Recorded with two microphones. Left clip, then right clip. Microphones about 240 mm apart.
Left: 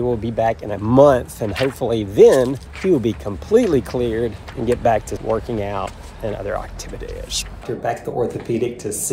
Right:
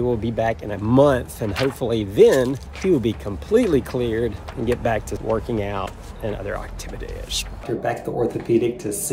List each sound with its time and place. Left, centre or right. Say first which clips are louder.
0.0 s speech: left 3 dB; centre
1.5 s speech: left 2 dB; right
1.8 s speech: left 3 dB; centre